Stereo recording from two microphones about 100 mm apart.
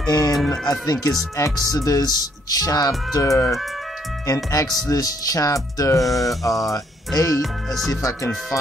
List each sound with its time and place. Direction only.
0.1 s speech: 40° left (ahead or behind)